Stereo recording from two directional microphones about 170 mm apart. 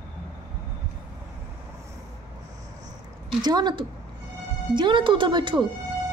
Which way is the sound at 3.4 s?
25° right (ahead or behind).